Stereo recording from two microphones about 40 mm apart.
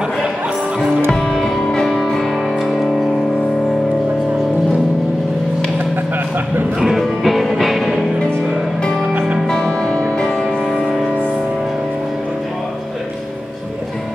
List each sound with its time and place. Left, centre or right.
0.7 s music: centre
7.0 s music: centre
9.5 s music: centre